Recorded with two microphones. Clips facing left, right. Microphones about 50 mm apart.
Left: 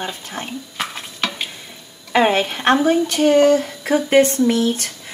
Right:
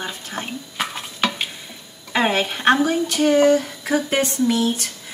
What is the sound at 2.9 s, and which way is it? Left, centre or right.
Speech, left.